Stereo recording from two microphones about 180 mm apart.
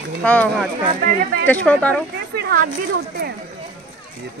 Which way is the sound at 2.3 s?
65° right (ahead or behind).